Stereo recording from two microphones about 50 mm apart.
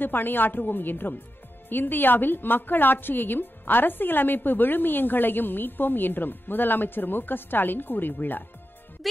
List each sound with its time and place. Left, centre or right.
0.0 s a woman's voice: left
9.0 s music: centre